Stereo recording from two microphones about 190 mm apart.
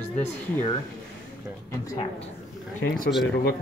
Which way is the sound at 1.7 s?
15° left (ahead or behind).